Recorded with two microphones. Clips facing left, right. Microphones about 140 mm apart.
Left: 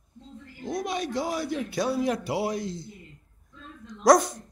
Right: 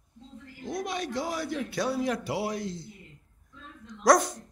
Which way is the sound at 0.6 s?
20° left (ahead or behind).